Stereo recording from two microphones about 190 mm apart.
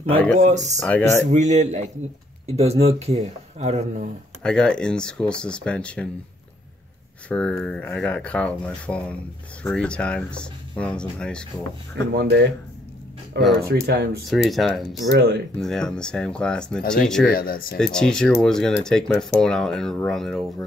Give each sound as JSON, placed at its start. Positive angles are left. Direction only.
{"t": 0.0, "sound": "speech", "side_deg": 10}
{"t": 0.4, "sound": "speech", "side_deg": -40}
{"t": 0.7, "sound": "speech", "side_deg": 10}
{"t": 1.3, "sound": "speech", "side_deg": -35}
{"t": 4.4, "sound": "speech", "side_deg": 5}
{"t": 7.2, "sound": "speech", "side_deg": 5}
{"t": 12.1, "sound": "speech", "side_deg": -60}
{"t": 13.6, "sound": "speech", "side_deg": -55}
{"t": 14.3, "sound": "speech", "side_deg": 0}
{"t": 15.1, "sound": "speech", "side_deg": -55}
{"t": 15.6, "sound": "speech", "side_deg": 5}
{"t": 17.3, "sound": "speech", "side_deg": 50}
{"t": 17.7, "sound": "speech", "side_deg": 5}